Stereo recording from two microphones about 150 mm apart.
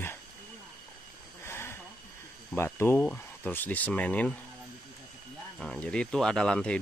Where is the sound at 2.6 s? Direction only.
15° left (ahead or behind).